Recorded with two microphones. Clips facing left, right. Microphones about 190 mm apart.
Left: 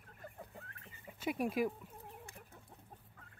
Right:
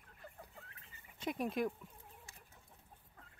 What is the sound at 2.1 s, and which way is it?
Chicken, 55° left (ahead or behind).